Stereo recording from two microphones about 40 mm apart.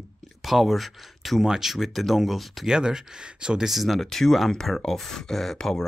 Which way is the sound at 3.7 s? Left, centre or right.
Centre.